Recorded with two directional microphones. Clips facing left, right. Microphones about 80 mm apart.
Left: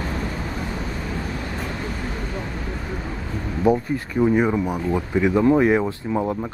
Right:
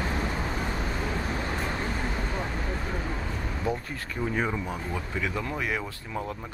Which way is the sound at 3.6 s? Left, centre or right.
Centre.